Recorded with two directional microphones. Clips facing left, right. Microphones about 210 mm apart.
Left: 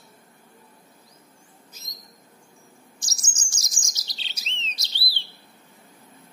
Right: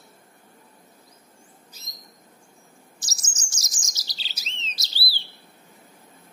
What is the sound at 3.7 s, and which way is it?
Chirp, centre (ahead or behind).